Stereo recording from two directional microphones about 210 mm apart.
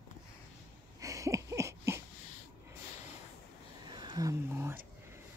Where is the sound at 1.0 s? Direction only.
15° right (ahead or behind).